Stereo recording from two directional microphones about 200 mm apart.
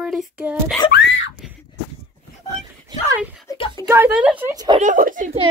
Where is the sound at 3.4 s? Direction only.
20° left (ahead or behind).